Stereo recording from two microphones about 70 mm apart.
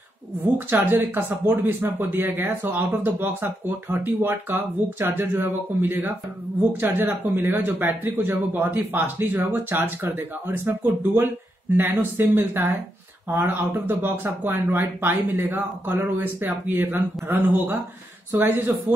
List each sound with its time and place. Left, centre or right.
0.8 s speech: right